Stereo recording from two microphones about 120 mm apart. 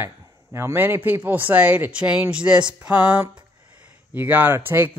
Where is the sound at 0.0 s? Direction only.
20° right (ahead or behind).